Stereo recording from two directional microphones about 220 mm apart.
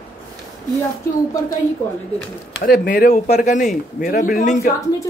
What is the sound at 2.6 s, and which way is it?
A man's voice, 40° left (ahead or behind).